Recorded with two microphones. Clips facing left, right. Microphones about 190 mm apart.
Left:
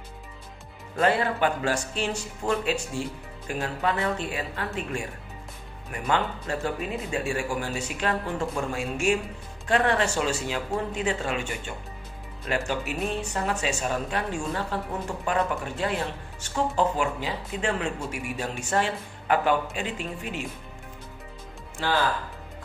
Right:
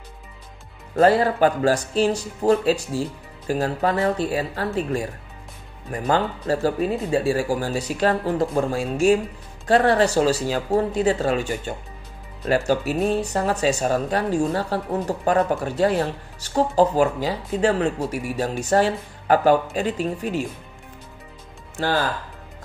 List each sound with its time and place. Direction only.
0.9 s speech: 35° right (ahead or behind)
5.9 s speech: 35° right (ahead or behind)
21.7 s speech: 40° right (ahead or behind)